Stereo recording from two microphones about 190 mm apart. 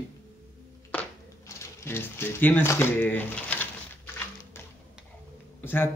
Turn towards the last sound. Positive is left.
turn(degrees=10)  # may be behind; listen again after turning